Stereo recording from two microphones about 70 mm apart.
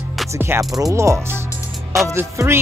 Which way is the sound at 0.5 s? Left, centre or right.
Right.